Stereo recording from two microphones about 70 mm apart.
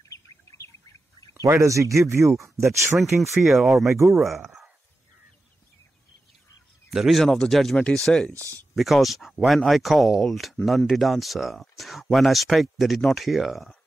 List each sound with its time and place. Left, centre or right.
0.1 s bird: left
1.3 s speech: right
3.0 s speech: centre
6.9 s speech: centre